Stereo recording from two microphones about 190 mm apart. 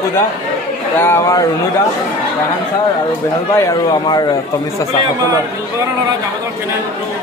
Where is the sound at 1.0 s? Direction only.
15° left (ahead or behind).